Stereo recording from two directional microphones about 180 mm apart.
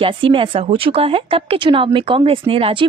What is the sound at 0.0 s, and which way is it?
Speech, 30° right (ahead or behind).